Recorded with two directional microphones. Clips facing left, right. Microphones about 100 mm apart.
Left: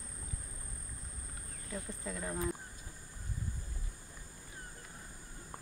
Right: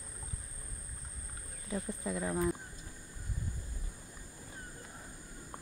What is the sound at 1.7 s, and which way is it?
Speech, 15° right (ahead or behind).